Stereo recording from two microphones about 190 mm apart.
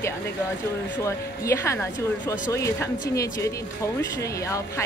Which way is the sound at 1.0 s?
15° left (ahead or behind).